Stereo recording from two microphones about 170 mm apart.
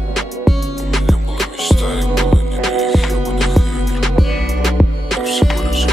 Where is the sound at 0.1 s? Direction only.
Centre (ahead or behind).